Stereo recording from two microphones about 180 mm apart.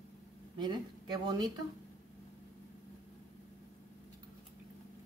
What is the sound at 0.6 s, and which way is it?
Speech, 25° right (ahead or behind).